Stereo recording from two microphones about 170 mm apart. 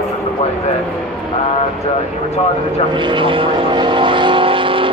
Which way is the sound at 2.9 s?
30° right (ahead or behind).